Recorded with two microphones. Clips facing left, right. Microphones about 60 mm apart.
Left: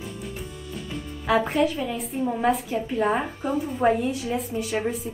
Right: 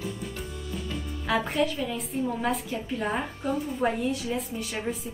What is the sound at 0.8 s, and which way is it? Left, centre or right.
A woman's voice, centre.